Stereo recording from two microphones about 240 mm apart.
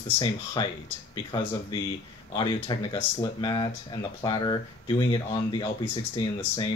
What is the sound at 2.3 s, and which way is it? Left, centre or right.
Speech, centre.